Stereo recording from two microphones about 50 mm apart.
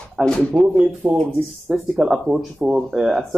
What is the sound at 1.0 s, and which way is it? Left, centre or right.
Speech, right.